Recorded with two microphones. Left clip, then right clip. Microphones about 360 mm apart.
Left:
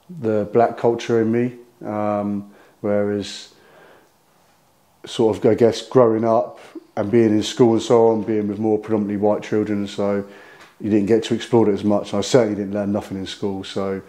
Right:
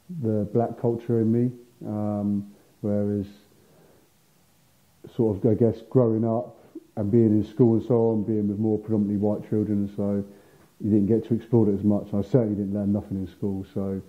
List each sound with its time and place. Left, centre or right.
0.2 s speech: centre
5.3 s speech: centre
8.5 s a man's voice: left
8.8 s speech: centre